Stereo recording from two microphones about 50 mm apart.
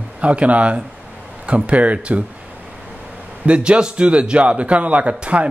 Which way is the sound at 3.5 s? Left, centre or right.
Right.